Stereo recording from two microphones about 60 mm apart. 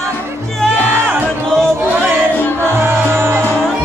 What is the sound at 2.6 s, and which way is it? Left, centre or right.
Music, right.